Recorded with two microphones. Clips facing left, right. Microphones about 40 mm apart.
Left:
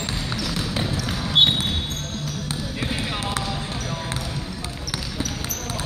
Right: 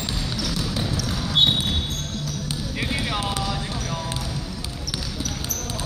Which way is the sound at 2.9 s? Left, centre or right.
Centre.